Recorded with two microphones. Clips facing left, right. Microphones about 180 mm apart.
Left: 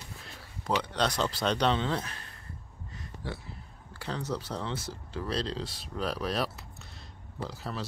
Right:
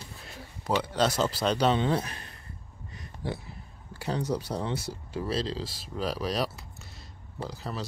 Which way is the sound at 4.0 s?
15° right (ahead or behind).